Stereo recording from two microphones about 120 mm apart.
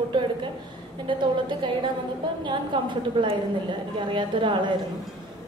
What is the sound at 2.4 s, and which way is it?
A woman's voice, 40° right (ahead or behind).